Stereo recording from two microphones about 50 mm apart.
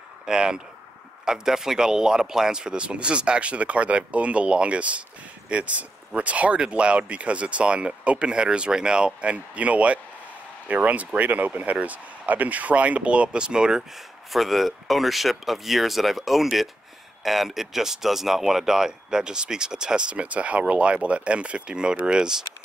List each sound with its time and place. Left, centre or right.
0.3 s speech: centre
14.3 s speech: centre